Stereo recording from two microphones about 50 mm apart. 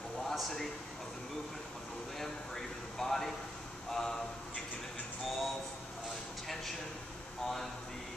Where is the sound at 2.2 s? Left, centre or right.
Centre.